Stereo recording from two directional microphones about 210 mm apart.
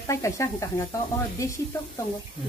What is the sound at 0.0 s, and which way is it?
Speech, 15° left (ahead or behind).